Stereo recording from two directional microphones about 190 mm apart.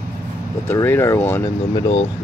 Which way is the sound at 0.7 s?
15° left (ahead or behind).